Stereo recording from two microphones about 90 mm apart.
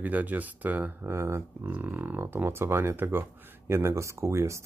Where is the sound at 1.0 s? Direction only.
30° right (ahead or behind).